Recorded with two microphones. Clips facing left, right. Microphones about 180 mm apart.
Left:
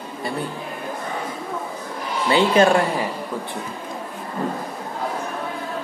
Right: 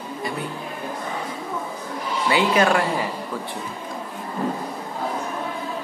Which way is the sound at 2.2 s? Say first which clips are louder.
Left 3 dB; 30° left (ahead or behind).